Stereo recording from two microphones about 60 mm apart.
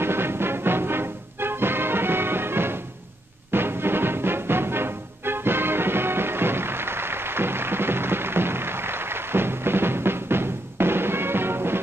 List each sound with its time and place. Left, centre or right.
0.0 s music: right